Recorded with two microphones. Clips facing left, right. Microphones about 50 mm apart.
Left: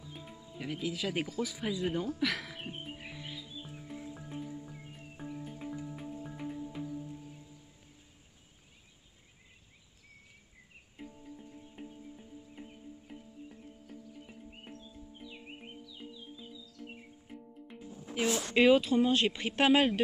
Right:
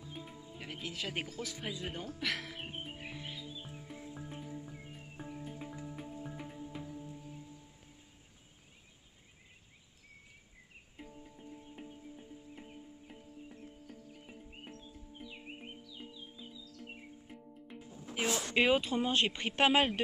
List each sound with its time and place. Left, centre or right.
0.2 s music: centre
0.5 s speech: centre
2.8 s music: centre
3.7 s music: centre
11.0 s music: centre
15.2 s music: centre
16.0 s music: centre
18.5 s speech: centre